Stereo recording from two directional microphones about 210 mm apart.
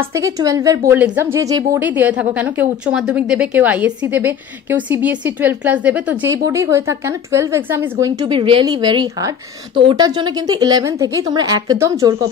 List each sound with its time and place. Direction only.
0.1 s a woman's voice: 15° right (ahead or behind)